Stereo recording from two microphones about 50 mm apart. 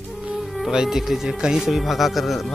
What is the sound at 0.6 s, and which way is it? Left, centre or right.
Speech, centre.